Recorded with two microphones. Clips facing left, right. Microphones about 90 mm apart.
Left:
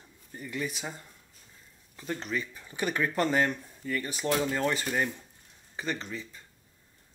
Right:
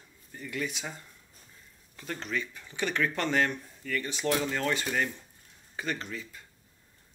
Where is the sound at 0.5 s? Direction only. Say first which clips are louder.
Even; centre (ahead or behind).